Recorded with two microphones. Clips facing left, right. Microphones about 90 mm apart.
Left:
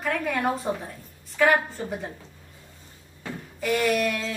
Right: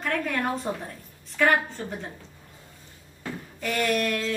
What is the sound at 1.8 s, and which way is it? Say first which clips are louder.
Speech: left 3 dB; 15° left (ahead or behind).